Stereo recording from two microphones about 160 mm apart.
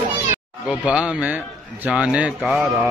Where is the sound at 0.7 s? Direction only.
5° right (ahead or behind).